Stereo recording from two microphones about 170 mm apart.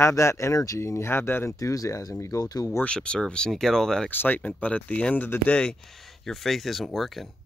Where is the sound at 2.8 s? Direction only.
5° left (ahead or behind).